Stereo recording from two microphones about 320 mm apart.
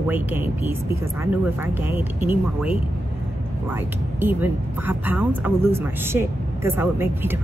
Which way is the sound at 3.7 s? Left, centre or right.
Centre.